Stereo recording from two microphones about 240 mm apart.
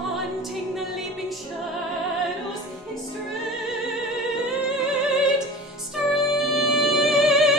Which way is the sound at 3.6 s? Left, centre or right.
Centre.